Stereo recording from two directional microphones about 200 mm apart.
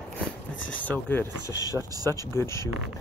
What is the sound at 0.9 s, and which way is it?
Speech, 10° left (ahead or behind).